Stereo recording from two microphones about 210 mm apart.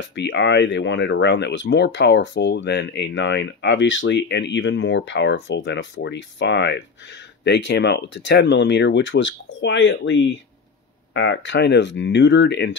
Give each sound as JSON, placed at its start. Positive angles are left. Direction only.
{"t": 0.0, "sound": "speech", "side_deg": 55}